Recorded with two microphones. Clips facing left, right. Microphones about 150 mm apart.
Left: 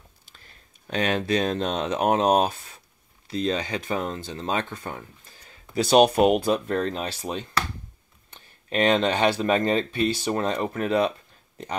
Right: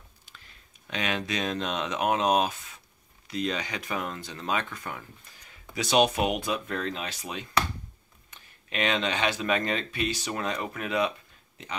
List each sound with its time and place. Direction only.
0.3 s speech: 40° left (ahead or behind)